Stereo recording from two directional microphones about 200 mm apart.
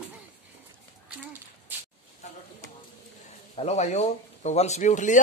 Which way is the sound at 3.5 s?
30° left (ahead or behind).